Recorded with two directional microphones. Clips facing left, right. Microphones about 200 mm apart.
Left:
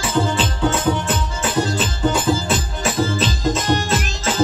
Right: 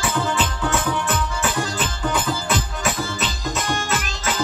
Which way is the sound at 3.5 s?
25° left (ahead or behind).